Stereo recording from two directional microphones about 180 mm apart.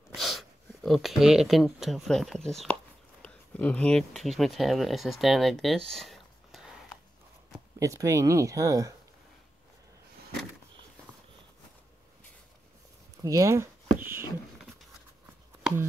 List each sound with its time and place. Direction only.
0.1 s speech: centre (ahead or behind)
7.8 s speech: 15° right (ahead or behind)
13.2 s a sound: 20° right (ahead or behind)